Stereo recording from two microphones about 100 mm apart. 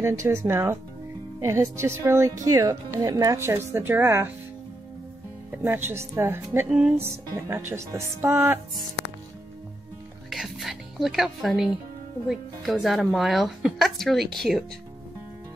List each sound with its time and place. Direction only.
0.0 s speech: 30° right (ahead or behind)
3.3 s speech: 25° right (ahead or behind)
5.5 s speech: 20° right (ahead or behind)
6.7 s music: 15° right (ahead or behind)
7.1 s speech: 25° right (ahead or behind)
10.3 s music: centre (ahead or behind)
12.3 s a woman's voice: 5° right (ahead or behind)